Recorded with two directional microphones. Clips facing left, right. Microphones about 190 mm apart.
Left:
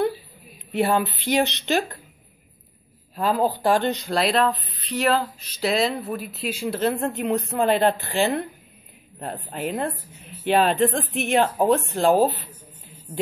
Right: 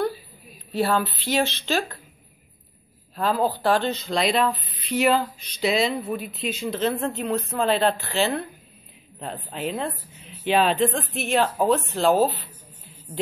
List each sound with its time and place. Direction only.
0.7 s a woman's voice: 15° left (ahead or behind)
3.2 s speech: 10° left (ahead or behind)
4.2 s speech: centre (ahead or behind); by 12.3 s 15° left (ahead or behind)